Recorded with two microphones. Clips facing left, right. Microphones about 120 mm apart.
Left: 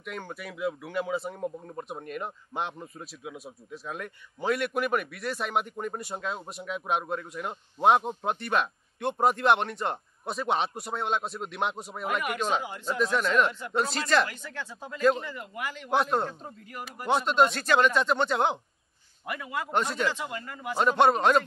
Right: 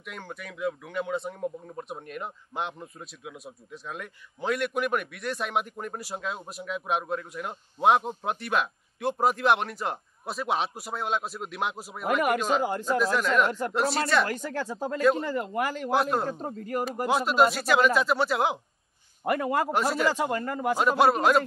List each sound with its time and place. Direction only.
0.0 s speech: centre (ahead or behind)
13.5 s speech: 45° right (ahead or behind)
13.7 s speech: 5° right (ahead or behind)
14.2 s speech: 45° right (ahead or behind)
15.9 s speech: centre (ahead or behind)
16.3 s speech: 45° right (ahead or behind)
17.1 s speech: 5° right (ahead or behind)
19.2 s speech: 45° right (ahead or behind)
19.7 s speech: 5° right (ahead or behind)
20.1 s speech: 45° right (ahead or behind)
20.7 s speech: 5° right (ahead or behind)